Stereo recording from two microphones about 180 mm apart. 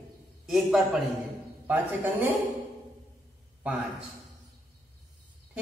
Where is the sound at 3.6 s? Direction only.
5° right (ahead or behind).